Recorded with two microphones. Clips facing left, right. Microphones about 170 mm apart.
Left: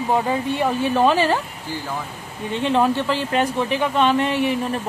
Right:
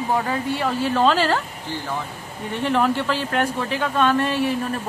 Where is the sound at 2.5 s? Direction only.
20° left (ahead or behind).